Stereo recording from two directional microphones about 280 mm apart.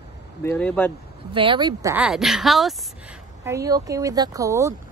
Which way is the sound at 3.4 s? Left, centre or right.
Centre.